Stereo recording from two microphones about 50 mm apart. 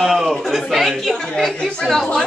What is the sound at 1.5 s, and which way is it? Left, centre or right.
Speech, left.